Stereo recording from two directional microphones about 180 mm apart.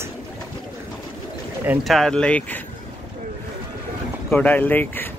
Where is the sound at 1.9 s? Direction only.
Centre (ahead or behind).